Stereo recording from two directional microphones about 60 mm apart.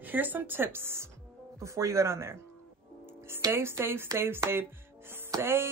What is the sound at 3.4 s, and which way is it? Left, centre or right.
Speech, right.